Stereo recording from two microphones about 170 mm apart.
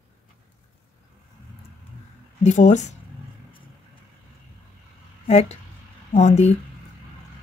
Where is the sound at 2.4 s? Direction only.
45° left (ahead or behind).